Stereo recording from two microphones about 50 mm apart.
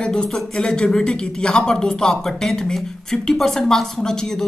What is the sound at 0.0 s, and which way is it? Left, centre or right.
Speech, centre.